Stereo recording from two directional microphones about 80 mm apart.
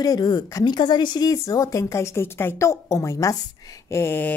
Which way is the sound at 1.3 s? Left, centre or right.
Left.